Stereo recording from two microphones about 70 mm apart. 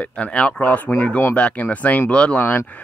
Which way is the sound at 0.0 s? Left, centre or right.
Centre.